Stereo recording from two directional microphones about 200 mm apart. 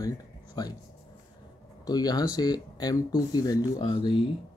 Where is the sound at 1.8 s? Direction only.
20° left (ahead or behind).